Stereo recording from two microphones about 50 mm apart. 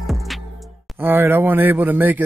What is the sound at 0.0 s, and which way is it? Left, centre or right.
Music, centre.